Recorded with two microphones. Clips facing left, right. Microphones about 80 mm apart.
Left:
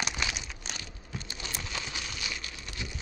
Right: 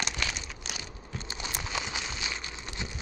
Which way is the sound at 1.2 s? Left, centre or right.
Right.